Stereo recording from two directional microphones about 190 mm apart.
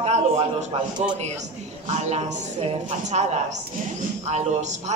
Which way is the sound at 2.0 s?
35° right (ahead or behind).